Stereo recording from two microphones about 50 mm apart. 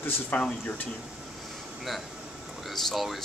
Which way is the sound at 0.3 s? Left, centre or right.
Left.